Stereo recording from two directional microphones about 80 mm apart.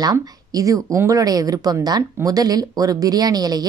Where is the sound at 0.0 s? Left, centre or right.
Right.